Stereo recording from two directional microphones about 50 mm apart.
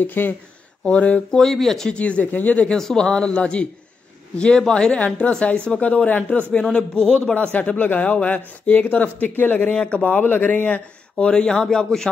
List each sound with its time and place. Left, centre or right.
0.0 s speech: left
0.8 s speech: left
1.4 s a man's voice: centre
1.9 s speech: left
2.7 s a man's voice: centre
3.1 s a man's voice: left
6.6 s a man's voice: centre
7.3 s speech: left
11.2 s a man's voice: centre